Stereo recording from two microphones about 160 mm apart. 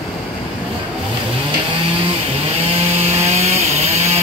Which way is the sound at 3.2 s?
40° right (ahead or behind).